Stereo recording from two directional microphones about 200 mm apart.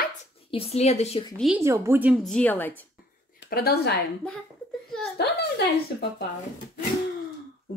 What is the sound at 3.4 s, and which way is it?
Speech, 50° left (ahead or behind).